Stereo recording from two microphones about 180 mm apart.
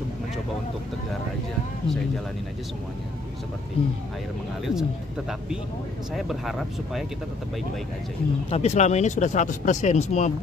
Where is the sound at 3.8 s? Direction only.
30° left (ahead or behind).